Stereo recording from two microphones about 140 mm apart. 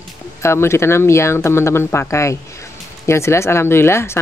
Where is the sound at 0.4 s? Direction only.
20° left (ahead or behind).